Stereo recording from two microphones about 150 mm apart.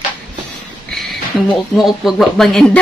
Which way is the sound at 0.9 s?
Centre (ahead or behind).